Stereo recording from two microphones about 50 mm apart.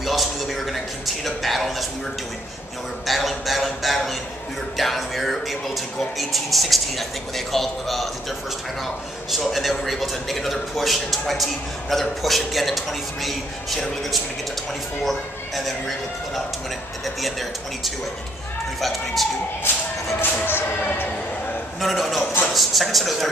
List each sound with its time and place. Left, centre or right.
0.0 s a sound: centre
3.1 s a sound: centre
4.7 s a man's voice: centre
17.0 s a man's voice: centre
20.4 s speech: left
21.7 s a man's voice: centre